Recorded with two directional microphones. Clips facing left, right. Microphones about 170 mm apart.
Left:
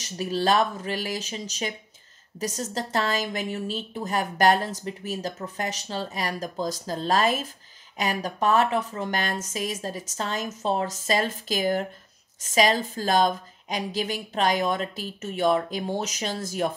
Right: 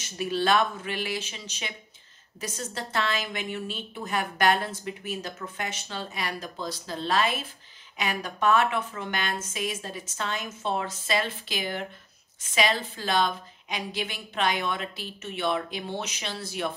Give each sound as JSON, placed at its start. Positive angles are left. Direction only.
{"t": 0.0, "sound": "a woman's voice", "side_deg": 35}